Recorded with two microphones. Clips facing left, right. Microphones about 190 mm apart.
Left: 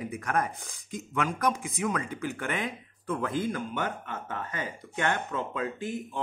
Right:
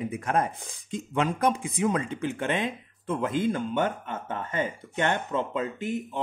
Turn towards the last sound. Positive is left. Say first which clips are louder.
# right 3 dB
turn(degrees=-20)  # may be behind; listen again after turning